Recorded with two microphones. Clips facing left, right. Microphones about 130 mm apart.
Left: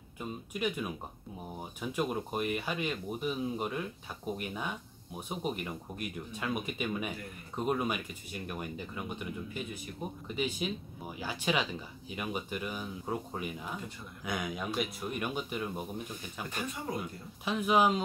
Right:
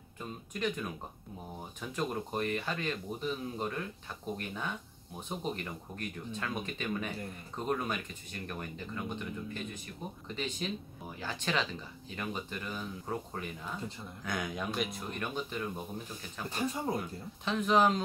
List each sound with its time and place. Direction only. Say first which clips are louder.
0.2 s speech: left 1 dB; 10° left (ahead or behind)
16.4 s speech: right 5 dB; 35° right (ahead or behind)
17.5 s speech: even; 10° left (ahead or behind)